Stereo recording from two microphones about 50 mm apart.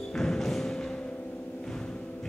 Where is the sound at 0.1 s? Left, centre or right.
Centre.